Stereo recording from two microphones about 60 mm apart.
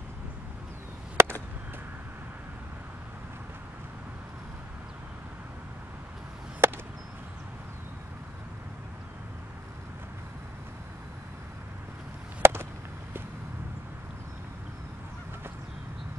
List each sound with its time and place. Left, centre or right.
1.2 s chop: right
6.6 s chop: right
12.4 s chop: right